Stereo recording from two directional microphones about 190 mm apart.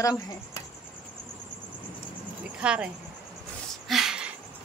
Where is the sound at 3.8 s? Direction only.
Centre (ahead or behind).